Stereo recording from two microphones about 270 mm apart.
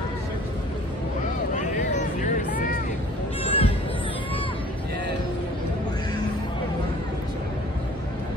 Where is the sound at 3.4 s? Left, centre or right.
Left.